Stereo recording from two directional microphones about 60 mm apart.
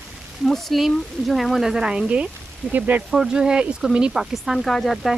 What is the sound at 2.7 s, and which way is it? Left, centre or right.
Speech, right.